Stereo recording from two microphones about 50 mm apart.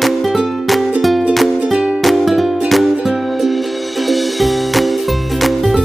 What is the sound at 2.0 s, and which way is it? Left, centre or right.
Music, centre.